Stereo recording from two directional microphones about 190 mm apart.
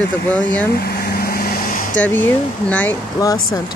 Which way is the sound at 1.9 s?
10° left (ahead or behind).